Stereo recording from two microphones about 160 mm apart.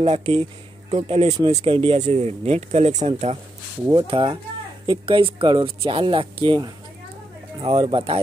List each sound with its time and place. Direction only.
0.0 s speech: 40° right (ahead or behind)
3.9 s speech: 30° right (ahead or behind)